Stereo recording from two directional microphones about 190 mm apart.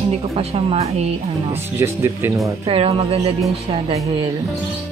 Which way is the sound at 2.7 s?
30° right (ahead or behind).